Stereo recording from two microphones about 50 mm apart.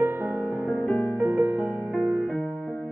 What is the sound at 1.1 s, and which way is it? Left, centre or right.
Music, right.